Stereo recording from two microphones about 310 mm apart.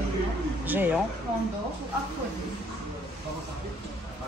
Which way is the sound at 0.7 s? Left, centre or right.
Centre.